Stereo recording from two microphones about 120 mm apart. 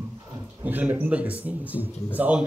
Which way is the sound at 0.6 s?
15° right (ahead or behind).